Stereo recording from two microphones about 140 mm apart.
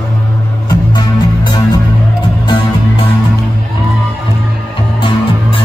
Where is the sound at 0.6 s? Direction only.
30° left (ahead or behind).